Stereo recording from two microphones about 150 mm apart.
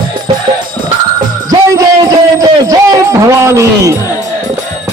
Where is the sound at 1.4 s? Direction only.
25° right (ahead or behind).